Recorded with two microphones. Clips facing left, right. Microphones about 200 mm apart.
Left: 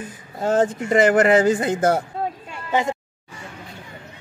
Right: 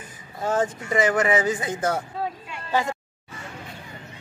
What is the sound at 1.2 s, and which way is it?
Speech, 65° left (ahead or behind).